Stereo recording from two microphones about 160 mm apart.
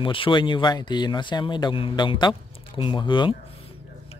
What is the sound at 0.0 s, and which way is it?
Speech, 30° left (ahead or behind).